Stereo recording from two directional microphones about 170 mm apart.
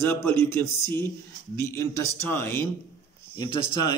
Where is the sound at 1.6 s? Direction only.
15° left (ahead or behind).